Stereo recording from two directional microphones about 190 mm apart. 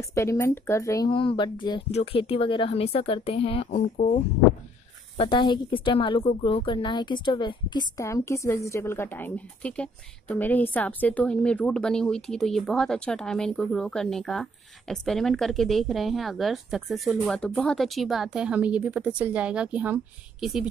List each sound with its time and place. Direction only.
0.1 s a woman's voice: 15° left (ahead or behind); by 20.6 s centre (ahead or behind)